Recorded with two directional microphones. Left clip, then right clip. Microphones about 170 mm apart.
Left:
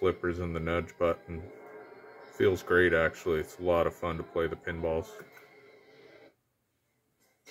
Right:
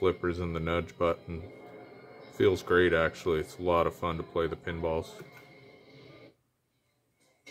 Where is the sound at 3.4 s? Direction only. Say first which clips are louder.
Even; 15° right (ahead or behind).